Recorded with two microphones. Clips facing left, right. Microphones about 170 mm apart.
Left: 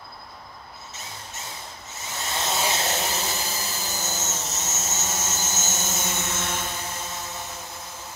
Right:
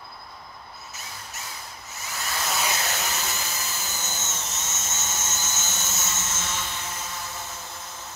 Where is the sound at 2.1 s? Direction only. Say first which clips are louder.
Left 2 dB; 25° left (ahead or behind).